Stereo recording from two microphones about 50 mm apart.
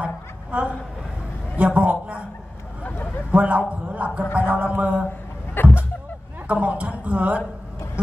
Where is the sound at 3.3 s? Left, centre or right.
Right.